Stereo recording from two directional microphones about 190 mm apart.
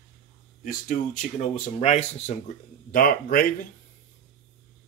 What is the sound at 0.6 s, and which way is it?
Speech, 45° left (ahead or behind).